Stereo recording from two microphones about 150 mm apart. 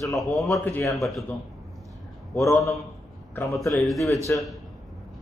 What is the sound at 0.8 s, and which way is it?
Speech, centre (ahead or behind).